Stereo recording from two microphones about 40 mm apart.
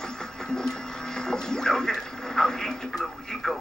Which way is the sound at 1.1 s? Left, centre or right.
Centre.